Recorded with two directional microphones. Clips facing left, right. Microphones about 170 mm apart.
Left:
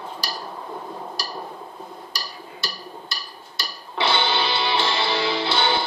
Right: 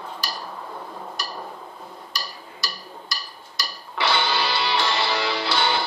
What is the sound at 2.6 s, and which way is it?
Music, 25° left (ahead or behind).